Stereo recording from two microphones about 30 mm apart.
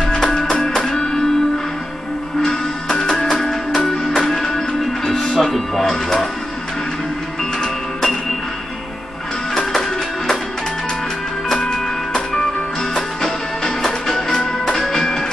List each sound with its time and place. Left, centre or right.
0.1 s music: left
2.4 s music: centre
9.5 s music: centre
11.6 s music: left